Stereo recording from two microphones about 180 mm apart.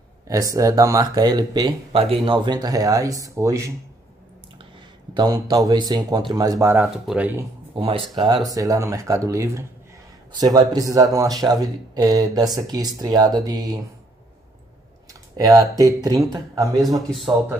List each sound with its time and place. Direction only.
0.3 s speech: 20° right (ahead or behind)
5.1 s speech: 20° right (ahead or behind)
6.8 s speech: 5° right (ahead or behind)
7.7 s speech: 30° right (ahead or behind)
15.3 s speech: 20° right (ahead or behind)